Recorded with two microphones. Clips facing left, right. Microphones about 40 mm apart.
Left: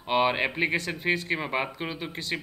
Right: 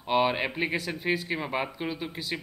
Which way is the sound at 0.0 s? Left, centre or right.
Centre.